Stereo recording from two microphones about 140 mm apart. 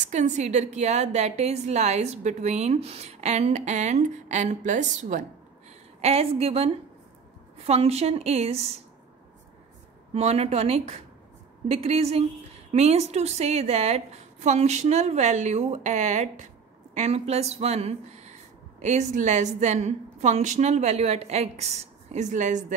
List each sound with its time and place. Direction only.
0.0 s a woman's voice: 55° right (ahead or behind)
5.9 s a woman's voice: 45° right (ahead or behind)
10.1 s a woman's voice: 50° right (ahead or behind)